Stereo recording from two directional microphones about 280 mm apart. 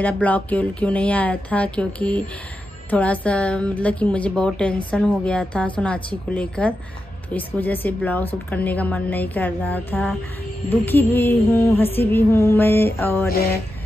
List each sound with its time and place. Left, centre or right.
0.0 s a woman's voice: centre
10.7 s music: centre
13.3 s a sound: left